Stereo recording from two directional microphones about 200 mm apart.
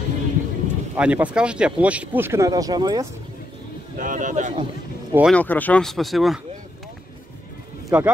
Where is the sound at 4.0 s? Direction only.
40° right (ahead or behind).